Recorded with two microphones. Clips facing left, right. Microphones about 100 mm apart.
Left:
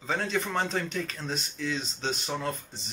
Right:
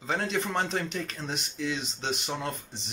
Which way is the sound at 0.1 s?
20° right (ahead or behind).